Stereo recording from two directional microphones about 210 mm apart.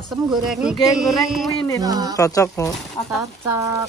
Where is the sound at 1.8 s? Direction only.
15° right (ahead or behind).